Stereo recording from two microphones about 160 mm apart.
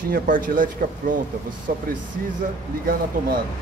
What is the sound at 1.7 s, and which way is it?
Speech, 70° right (ahead or behind).